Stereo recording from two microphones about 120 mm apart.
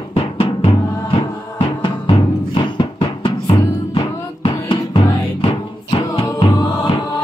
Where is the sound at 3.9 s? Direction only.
45° left (ahead or behind).